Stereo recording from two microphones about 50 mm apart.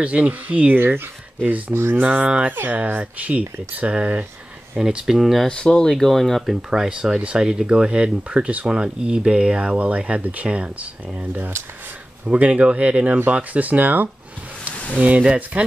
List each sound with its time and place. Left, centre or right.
0.0 s speech: right
0.7 s speech: right
1.7 s speech: right
2.0 s speech: right
2.5 s speech: right
2.8 s speech: right; by 5.5 s centre
5.5 s speech: centre
5.9 s speech: centre
6.4 s speech: centre
11.1 s speech: right